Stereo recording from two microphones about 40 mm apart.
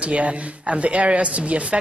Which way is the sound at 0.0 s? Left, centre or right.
Right.